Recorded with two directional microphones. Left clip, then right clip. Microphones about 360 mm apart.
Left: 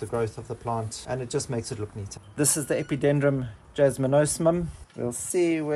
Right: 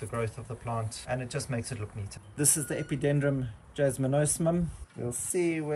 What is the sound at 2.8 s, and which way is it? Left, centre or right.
Speech, left.